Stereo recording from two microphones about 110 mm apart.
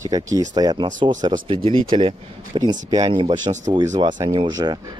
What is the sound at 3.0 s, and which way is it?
Speech, 50° right (ahead or behind).